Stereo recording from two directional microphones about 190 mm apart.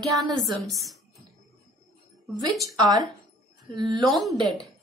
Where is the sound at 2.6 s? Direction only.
20° right (ahead or behind).